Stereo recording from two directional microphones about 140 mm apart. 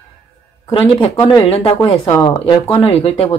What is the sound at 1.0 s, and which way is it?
Speech, 35° left (ahead or behind).